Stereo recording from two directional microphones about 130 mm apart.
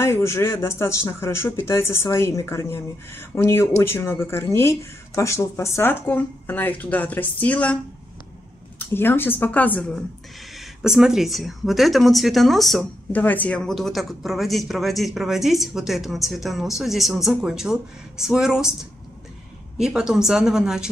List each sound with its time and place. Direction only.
0.0 s speech: 20° left (ahead or behind)
8.7 s a woman's voice: 15° left (ahead or behind)
10.8 s speech: 5° right (ahead or behind)
13.1 s speech: 15° left (ahead or behind); by 18.7 s 5° right (ahead or behind)
19.8 s speech: 5° right (ahead or behind)